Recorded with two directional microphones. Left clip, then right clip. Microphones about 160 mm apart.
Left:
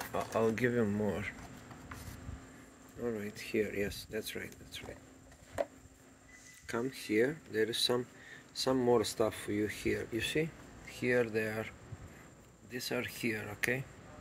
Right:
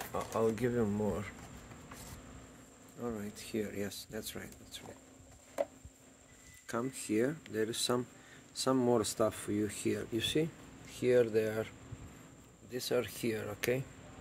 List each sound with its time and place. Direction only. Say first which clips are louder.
0.1 s speech: left 1 dB; centre (ahead or behind)
3.0 s speech: left 3 dB; 10° right (ahead or behind)
6.7 s speech: left 1 dB; 30° right (ahead or behind)
12.7 s speech: right 3 dB; 30° right (ahead or behind)